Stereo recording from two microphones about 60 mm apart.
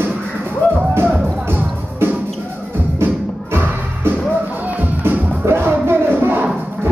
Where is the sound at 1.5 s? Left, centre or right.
Right.